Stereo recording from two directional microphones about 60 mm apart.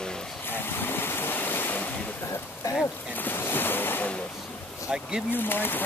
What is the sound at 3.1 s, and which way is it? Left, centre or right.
Speech, left.